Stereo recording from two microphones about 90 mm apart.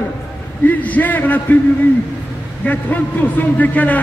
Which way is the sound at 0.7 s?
20° left (ahead or behind).